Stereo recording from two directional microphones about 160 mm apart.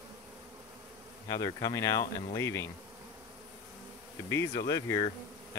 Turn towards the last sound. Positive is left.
turn(degrees=20)  # may be behind; listen again after turning